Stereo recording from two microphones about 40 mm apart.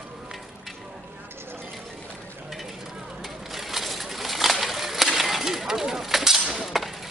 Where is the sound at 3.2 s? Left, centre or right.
Centre.